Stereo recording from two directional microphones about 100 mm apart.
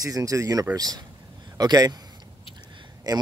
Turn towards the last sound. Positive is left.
turn(degrees=-40)  # may be behind; listen again after turning